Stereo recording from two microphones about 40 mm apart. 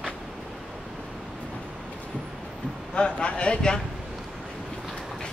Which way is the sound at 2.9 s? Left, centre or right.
Left.